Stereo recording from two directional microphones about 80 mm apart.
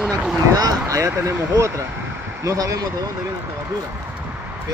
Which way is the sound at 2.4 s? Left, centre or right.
Right.